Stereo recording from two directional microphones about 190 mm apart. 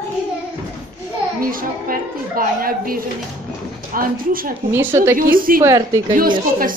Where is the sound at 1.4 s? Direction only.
50° right (ahead or behind).